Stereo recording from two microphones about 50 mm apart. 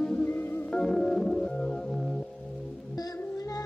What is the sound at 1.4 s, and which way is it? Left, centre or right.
Music, left.